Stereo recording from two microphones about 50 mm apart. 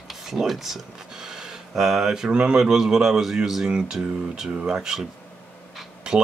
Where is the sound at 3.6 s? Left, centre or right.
Centre.